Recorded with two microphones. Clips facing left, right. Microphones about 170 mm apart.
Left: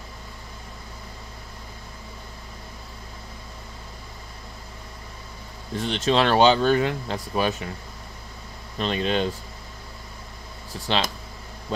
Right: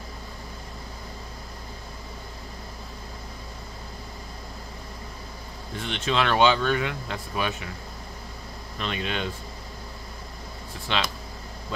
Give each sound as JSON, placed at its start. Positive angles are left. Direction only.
{"t": 5.8, "sound": "speech", "side_deg": 35}
{"t": 8.7, "sound": "speech", "side_deg": 30}
{"t": 10.9, "sound": "speech", "side_deg": 35}